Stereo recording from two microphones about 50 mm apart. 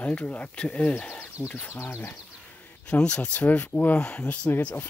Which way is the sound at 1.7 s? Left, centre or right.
Left.